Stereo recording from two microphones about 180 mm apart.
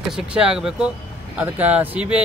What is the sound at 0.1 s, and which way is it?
Speech, 5° right (ahead or behind).